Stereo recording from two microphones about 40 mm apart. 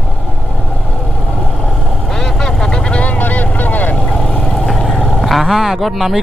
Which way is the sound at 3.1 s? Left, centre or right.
Left.